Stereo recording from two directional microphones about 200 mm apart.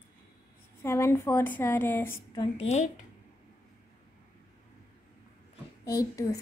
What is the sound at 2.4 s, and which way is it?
Speech, 30° left (ahead or behind).